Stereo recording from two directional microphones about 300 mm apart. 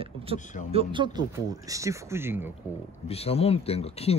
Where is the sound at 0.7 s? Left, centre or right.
Centre.